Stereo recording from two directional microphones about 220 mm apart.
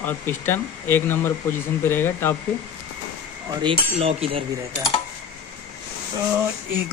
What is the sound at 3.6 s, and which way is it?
Cutlery, 25° right (ahead or behind).